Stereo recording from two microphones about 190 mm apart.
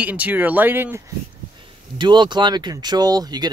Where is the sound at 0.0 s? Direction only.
10° right (ahead or behind).